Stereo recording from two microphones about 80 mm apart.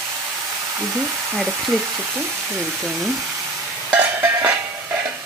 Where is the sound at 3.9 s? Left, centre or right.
Right.